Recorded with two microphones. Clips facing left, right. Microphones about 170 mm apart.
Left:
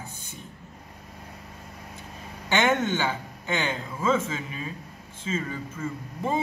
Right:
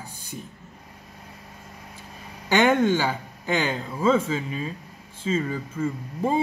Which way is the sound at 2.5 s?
35° right (ahead or behind).